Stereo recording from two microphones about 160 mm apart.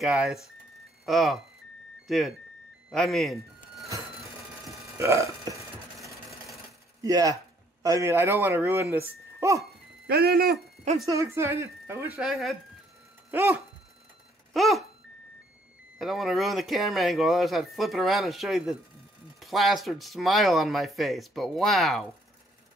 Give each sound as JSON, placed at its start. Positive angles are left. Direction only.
{"t": 0.0, "sound": "speech", "side_deg": -5}
{"t": 2.9, "sound": "a sound", "side_deg": 0}
{"t": 4.9, "sound": "speech", "side_deg": -20}
{"t": 7.0, "sound": "speech", "side_deg": -20}
{"t": 10.0, "sound": "speech", "side_deg": -80}
{"t": 11.1, "sound": "speech", "side_deg": -20}
{"t": 12.2, "sound": "speech", "side_deg": 0}
{"t": 13.3, "sound": "speech", "side_deg": -15}
{"t": 14.5, "sound": "a sound", "side_deg": 0}
{"t": 16.0, "sound": "speech", "side_deg": 0}